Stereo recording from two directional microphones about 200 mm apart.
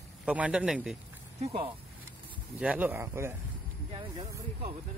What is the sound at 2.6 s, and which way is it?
Speech, 10° right (ahead or behind).